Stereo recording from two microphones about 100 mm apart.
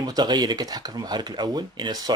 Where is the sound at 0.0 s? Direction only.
45° right (ahead or behind).